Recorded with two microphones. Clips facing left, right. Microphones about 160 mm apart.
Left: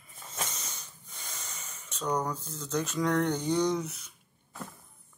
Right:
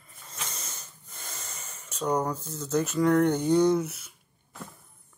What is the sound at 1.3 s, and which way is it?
Speech, centre (ahead or behind).